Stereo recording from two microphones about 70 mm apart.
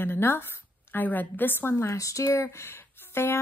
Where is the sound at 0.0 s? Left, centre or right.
Left.